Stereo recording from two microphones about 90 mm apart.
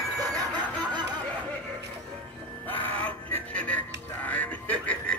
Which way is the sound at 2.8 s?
15° left (ahead or behind).